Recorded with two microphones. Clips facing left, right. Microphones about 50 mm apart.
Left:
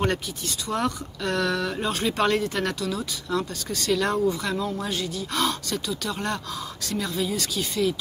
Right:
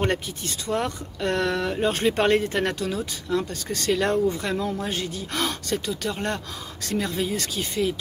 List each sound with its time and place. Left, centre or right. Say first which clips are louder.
0.7 s speech: even; right